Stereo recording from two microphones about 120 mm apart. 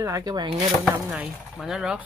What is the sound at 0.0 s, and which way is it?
Speech, 30° right (ahead or behind).